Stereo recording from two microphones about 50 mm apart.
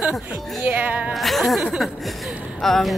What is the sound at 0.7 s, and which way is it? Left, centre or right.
Speech, right.